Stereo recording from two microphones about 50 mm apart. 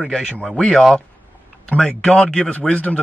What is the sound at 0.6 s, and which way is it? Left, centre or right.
Speech, centre.